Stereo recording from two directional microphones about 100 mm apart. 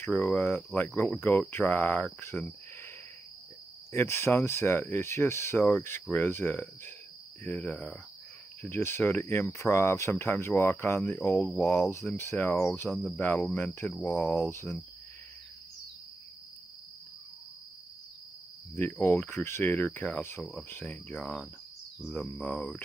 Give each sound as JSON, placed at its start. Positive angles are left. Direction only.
{"t": 0.7, "sound": "speech", "side_deg": 20}
{"t": 2.1, "sound": "cricket", "side_deg": 20}
{"t": 3.9, "sound": "speech", "side_deg": 25}
{"t": 18.8, "sound": "speech", "side_deg": 20}
{"t": 21.2, "sound": "cricket", "side_deg": 5}
{"t": 22.0, "sound": "speech", "side_deg": 5}